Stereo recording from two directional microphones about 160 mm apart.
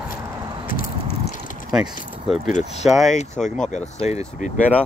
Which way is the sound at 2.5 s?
45° left (ahead or behind).